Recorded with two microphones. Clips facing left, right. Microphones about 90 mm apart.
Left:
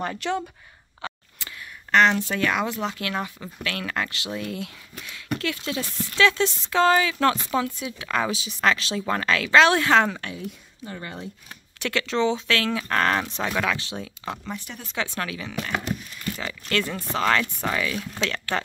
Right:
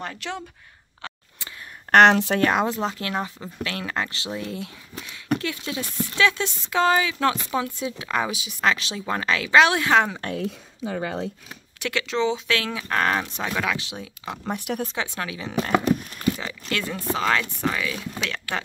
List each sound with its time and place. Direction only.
0.0 s speech: centre (ahead or behind)
1.0 s a sound: 5° left (ahead or behind)
1.9 s speech: 65° right (ahead or behind)
2.4 s speech: 40° right (ahead or behind); by 10.2 s 5° right (ahead or behind)
10.9 s speech: 90° right
11.8 s speech: 5° right (ahead or behind); by 15.7 s 25° right (ahead or behind)
15.7 s a sound: 50° right (ahead or behind)
16.3 s a sound: 15° right (ahead or behind)
16.9 s speech: 5° right (ahead or behind)